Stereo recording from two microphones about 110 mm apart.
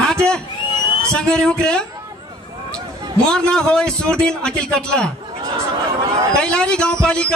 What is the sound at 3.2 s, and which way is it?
A man's voice, 5° left (ahead or behind).